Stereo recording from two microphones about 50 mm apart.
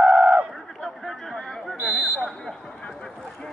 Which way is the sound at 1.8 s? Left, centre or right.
Right.